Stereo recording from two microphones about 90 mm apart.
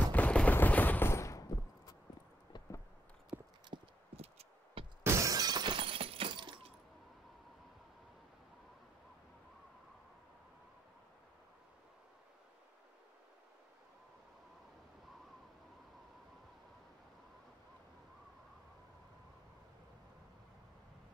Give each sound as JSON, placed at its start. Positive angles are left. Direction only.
{"t": 0.1, "sound": "machine gun", "side_deg": 15}
{"t": 0.6, "sound": "fusillade", "side_deg": 20}
{"t": 3.3, "sound": "clip-clop", "side_deg": -25}
{"t": 3.7, "sound": "clip-clop", "side_deg": -90}
{"t": 5.0, "sound": "shatter", "side_deg": -35}